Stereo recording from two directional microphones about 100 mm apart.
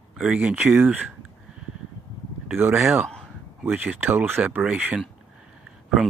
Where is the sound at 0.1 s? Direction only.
10° right (ahead or behind).